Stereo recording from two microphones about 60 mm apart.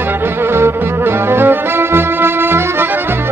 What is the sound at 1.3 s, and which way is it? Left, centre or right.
Music, right.